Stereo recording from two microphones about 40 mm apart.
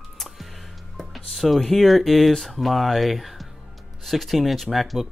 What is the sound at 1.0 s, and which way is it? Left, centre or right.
Speech, centre.